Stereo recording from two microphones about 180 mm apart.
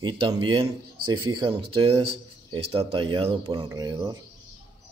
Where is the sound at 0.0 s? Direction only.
25° right (ahead or behind).